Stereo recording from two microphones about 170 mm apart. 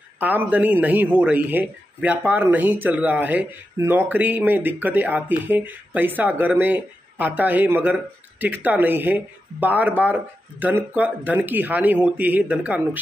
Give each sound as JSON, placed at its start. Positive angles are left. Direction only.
{"t": 0.2, "sound": "speech", "side_deg": -10}